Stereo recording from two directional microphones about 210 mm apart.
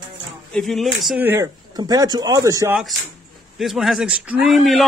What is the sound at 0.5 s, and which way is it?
A man's voice, centre (ahead or behind).